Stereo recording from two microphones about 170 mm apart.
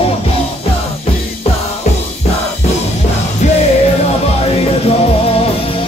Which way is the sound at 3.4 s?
45° left (ahead or behind).